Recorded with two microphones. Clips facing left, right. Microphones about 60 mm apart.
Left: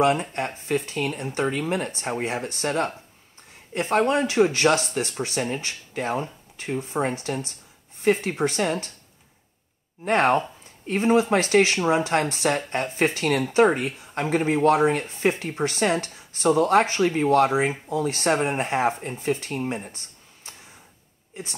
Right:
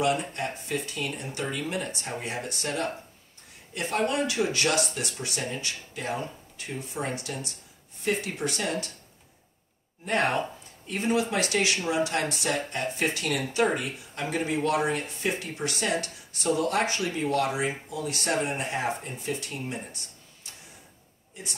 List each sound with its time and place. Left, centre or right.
0.0 s speech: left
10.0 s speech: left